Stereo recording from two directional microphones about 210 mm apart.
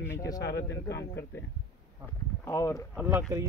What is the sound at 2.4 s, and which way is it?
Speech, 15° left (ahead or behind).